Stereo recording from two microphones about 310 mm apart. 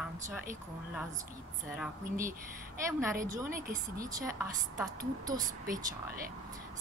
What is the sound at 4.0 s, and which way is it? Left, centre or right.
A woman's voice, centre.